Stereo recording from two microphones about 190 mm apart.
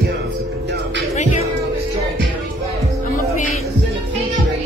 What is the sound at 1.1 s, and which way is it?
Music, 40° left (ahead or behind).